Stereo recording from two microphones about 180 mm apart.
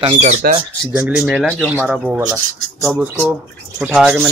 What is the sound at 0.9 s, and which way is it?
Speech, 5° right (ahead or behind).